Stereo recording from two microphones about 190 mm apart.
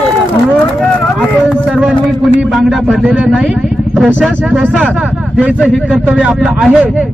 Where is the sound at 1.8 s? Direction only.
5° right (ahead or behind).